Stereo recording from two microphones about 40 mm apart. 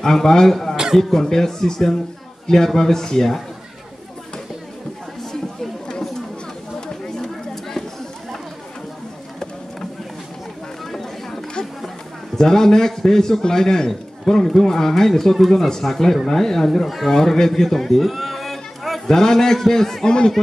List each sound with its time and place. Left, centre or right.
0.0 s a man's voice: centre
5.3 s chatter: centre
12.4 s a man's voice: centre
20.1 s speech: left